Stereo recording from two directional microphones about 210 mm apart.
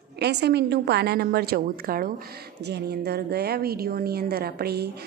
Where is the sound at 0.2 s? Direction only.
55° right (ahead or behind).